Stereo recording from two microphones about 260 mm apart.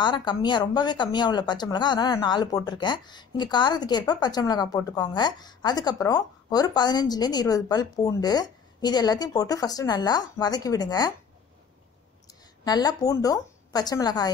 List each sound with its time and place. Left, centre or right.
0.0 s a woman's voice: centre
12.6 s a woman's voice: centre